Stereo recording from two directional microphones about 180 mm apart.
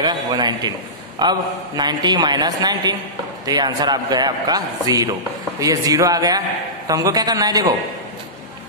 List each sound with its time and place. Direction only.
0.0 s a man's voice: 25° right (ahead or behind)